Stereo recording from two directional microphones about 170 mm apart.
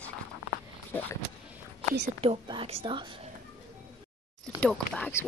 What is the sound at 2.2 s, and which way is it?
Speech, 30° right (ahead or behind).